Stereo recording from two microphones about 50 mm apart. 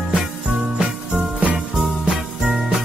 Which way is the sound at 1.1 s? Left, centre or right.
Right.